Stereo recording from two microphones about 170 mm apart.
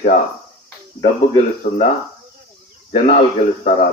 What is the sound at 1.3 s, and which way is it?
Speech, 35° left (ahead or behind).